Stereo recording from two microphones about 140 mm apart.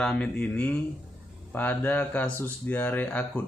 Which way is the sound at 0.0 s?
5° left (ahead or behind).